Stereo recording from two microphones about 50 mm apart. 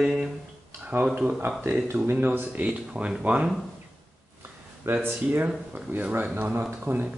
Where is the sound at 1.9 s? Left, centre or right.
Right.